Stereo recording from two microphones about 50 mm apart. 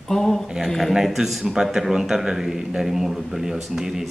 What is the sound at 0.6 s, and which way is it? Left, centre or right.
Speech, centre.